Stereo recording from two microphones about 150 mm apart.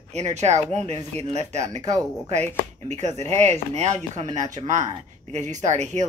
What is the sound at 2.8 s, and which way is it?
Speech, 50° right (ahead or behind).